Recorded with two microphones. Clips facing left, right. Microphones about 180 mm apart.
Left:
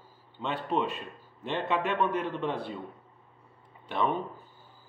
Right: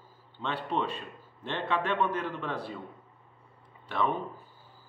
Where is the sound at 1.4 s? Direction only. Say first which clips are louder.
Left 1 dB; 15° left (ahead or behind).